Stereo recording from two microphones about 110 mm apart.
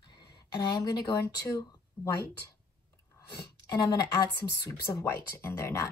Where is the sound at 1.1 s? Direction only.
30° left (ahead or behind).